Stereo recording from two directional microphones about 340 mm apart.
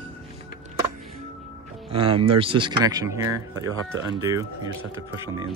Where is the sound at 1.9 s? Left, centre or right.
Centre.